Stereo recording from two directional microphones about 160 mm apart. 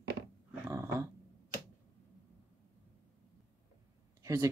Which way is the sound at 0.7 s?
20° right (ahead or behind).